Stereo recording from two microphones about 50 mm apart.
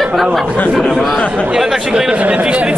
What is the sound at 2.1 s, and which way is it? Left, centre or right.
Speech, right.